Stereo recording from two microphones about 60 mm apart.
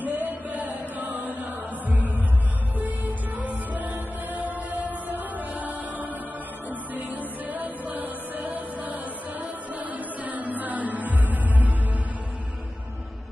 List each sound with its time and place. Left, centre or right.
0.0 s chant: right
3.3 s music: right